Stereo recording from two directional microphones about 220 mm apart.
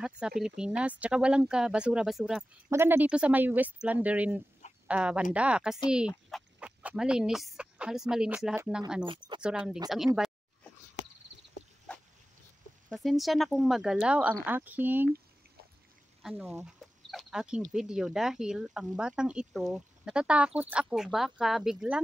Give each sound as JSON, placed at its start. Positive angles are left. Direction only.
{"t": 0.4, "sound": "speech", "side_deg": -5}
{"t": 9.0, "sound": "speech", "side_deg": -20}
{"t": 9.4, "sound": "speech", "side_deg": -5}
{"t": 9.8, "sound": "a sound", "side_deg": 0}
{"t": 12.9, "sound": "speech", "side_deg": 0}
{"t": 16.2, "sound": "speech", "side_deg": 0}